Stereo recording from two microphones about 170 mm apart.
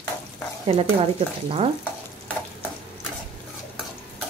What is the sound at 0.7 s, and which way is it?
Speech, 35° right (ahead or behind).